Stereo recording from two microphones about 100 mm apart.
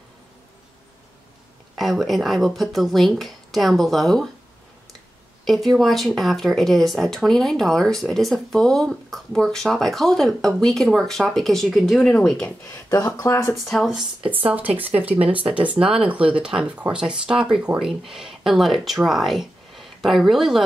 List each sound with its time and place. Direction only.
1.8 s speech: centre (ahead or behind)
5.4 s speech: centre (ahead or behind)
13.2 s speech: 25° left (ahead or behind)
13.7 s speech: centre (ahead or behind)
14.5 s speech: 15° right (ahead or behind)
15.7 s speech: 70° right (ahead or behind)
16.1 s speech: 10° right (ahead or behind)